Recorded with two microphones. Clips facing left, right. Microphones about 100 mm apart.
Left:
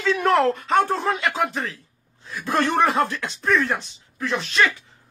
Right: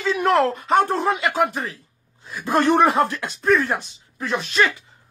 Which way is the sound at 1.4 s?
15° right (ahead or behind).